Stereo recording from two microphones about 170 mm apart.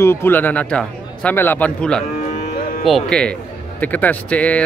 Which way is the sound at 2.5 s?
50° left (ahead or behind).